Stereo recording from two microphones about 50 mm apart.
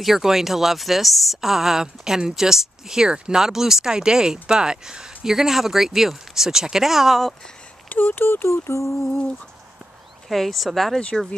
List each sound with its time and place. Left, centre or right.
0.0 s speech: centre
7.9 s speech: left
10.2 s speech: centre